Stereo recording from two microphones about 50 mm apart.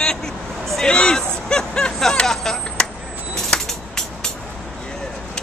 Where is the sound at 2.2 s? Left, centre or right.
Centre.